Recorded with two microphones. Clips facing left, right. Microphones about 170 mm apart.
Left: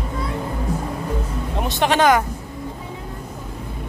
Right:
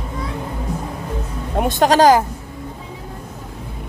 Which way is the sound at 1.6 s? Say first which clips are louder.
Right 5 dB; 40° right (ahead or behind).